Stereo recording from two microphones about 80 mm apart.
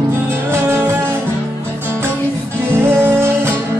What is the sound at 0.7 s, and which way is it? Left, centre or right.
Music, right.